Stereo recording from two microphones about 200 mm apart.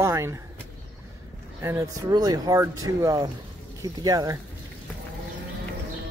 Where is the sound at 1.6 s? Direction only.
15° right (ahead or behind).